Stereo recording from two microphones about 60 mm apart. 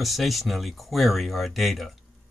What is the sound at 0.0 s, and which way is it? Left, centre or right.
Speech, centre.